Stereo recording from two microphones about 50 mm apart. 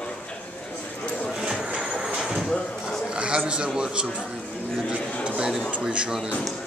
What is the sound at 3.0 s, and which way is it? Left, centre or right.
Speech, centre.